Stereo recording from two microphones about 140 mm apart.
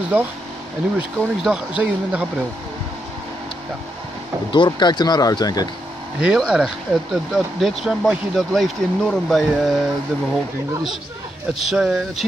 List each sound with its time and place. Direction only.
0.1 s speech: 15° right (ahead or behind)
4.5 s speech: 35° left (ahead or behind)
6.1 s speech: 5° right (ahead or behind)
11.5 s speech: 5° right (ahead or behind)